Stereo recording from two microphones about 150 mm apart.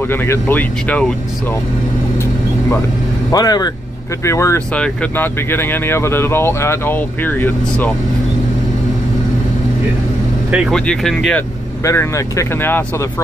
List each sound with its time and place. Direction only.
0.1 s speech: 15° left (ahead or behind)
3.3 s speech: 25° left (ahead or behind)
4.7 s speech: 10° left (ahead or behind)
10.5 s speech: 5° right (ahead or behind)
11.8 s speech: 20° left (ahead or behind)